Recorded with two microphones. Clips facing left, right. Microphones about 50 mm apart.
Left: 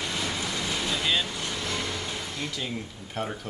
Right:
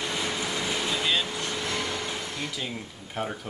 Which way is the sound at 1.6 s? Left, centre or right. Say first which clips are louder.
Right 1 dB; centre.